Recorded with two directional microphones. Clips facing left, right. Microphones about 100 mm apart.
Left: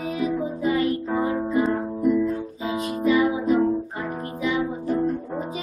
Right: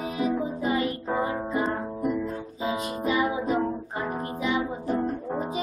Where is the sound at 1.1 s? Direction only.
10° right (ahead or behind).